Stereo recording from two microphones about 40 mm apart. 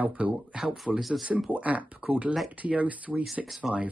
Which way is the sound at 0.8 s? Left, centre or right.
Centre.